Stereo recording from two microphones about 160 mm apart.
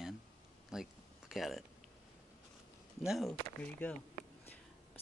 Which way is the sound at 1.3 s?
Centre (ahead or behind).